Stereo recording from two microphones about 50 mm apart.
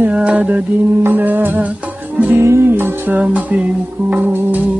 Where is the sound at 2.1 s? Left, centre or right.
Right.